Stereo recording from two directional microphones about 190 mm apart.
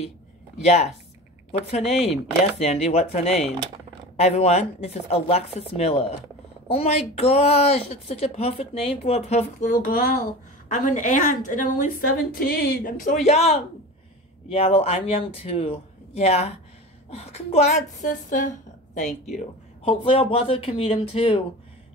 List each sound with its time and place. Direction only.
0.6 s a woman's voice: 35° left (ahead or behind)
19.3 s speech: 30° left (ahead or behind)